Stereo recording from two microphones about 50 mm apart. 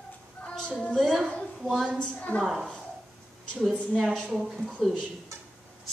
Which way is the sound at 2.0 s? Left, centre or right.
Left.